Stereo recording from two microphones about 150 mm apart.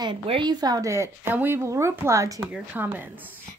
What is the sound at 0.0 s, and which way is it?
A woman's voice, 30° right (ahead or behind).